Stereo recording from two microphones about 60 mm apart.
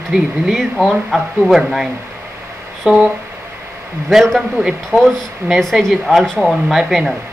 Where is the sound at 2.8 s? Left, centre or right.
Centre.